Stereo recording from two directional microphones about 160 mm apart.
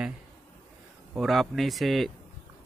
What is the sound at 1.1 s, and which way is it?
Speech, centre (ahead or behind).